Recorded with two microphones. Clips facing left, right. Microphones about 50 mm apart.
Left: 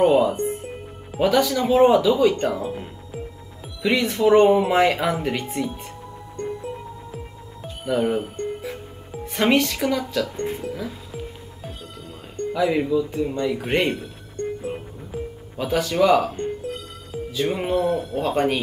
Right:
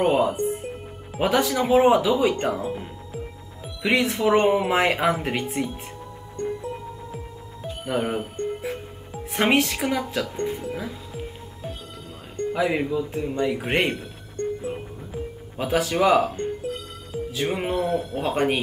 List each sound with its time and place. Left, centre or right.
0.0 s speech: centre
1.2 s speech: right
3.6 s music: centre
4.0 s speech: centre
4.3 s speech: centre
7.6 s music: centre
9.3 s speech: centre
12.5 s speech: centre
15.5 s speech: centre
17.4 s speech: centre